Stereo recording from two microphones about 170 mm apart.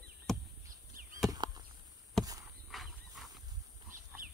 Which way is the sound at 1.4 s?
25° right (ahead or behind).